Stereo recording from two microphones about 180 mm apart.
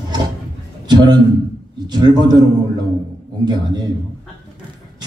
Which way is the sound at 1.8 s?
25° right (ahead or behind).